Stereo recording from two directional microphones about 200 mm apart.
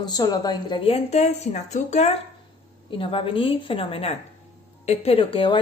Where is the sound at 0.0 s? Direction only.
20° left (ahead or behind).